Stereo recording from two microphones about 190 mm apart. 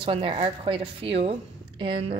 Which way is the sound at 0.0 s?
30° right (ahead or behind).